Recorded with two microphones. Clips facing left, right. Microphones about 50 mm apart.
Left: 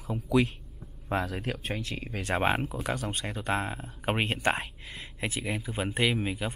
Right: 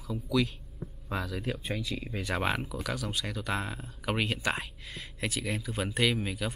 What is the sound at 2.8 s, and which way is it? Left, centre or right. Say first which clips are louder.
Speech: left 2 dB; left.